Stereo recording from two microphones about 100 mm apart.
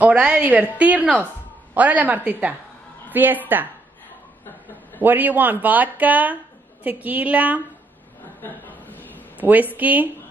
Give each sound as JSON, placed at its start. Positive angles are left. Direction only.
{"t": 0.0, "sound": "a woman's voice", "side_deg": -10}
{"t": 5.0, "sound": "speech", "side_deg": -20}
{"t": 8.4, "sound": "a sound", "side_deg": 15}
{"t": 9.4, "sound": "speech", "side_deg": -15}